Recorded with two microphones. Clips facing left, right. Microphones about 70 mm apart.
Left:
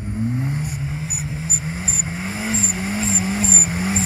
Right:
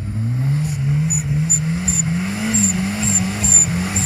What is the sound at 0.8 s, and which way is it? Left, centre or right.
Vehicle, centre.